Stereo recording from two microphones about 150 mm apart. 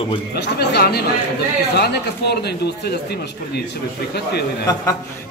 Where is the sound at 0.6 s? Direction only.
90° left.